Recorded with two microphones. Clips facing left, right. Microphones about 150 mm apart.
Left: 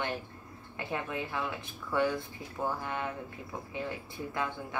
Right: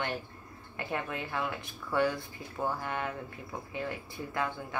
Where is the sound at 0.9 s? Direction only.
10° left (ahead or behind).